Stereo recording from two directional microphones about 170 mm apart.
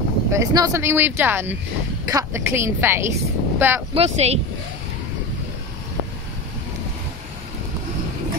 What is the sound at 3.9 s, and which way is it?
Speech, 40° right (ahead or behind).